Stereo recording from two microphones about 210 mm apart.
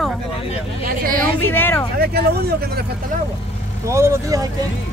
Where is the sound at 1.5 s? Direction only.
10° left (ahead or behind).